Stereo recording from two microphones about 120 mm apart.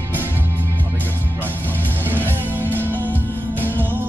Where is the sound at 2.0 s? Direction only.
15° right (ahead or behind).